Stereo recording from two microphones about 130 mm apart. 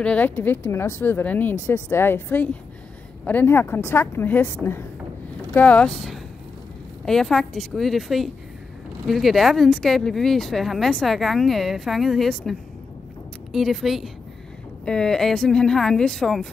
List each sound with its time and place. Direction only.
0.0 s speech: 10° left (ahead or behind)